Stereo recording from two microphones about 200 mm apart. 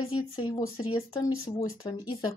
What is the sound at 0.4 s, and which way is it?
A woman's voice, 20° left (ahead or behind).